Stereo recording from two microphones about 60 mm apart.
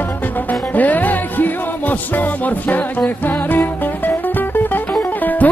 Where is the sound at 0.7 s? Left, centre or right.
Left.